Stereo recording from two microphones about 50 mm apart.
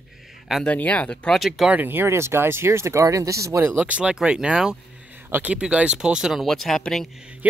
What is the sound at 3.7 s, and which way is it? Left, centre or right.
Speech, right.